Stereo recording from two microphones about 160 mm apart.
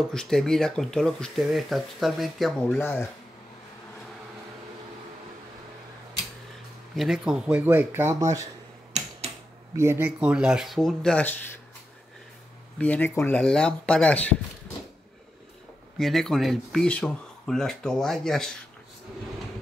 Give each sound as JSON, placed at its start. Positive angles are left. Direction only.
{"t": 0.1, "sound": "speech", "side_deg": 5}
{"t": 2.8, "sound": "speech", "side_deg": 15}
{"t": 7.0, "sound": "speech", "side_deg": -5}
{"t": 9.0, "sound": "tick-tock", "side_deg": -45}
{"t": 9.8, "sound": "speech", "side_deg": -15}
{"t": 12.7, "sound": "speech", "side_deg": 10}
{"t": 16.0, "sound": "speech", "side_deg": 0}